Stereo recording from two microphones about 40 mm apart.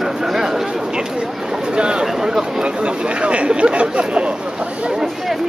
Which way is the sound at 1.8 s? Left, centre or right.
Right.